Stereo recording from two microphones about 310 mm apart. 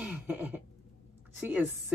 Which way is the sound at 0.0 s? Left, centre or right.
Centre.